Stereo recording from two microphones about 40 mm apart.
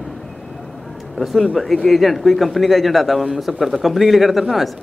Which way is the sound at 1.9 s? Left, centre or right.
Centre.